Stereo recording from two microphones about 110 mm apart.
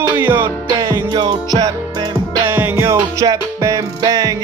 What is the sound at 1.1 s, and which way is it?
Music, 45° right (ahead or behind).